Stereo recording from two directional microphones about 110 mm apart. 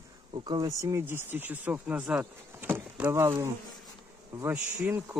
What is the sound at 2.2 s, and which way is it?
Vehicle, 20° right (ahead or behind).